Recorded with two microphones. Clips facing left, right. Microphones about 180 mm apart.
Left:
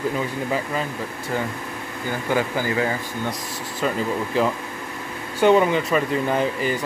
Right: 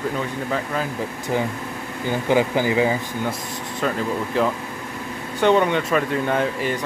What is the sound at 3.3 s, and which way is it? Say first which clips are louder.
Speech: right 1 dB; centre (ahead or behind).